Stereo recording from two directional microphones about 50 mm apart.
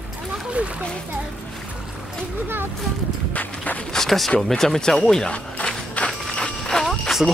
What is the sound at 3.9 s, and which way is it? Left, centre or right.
Speech, centre.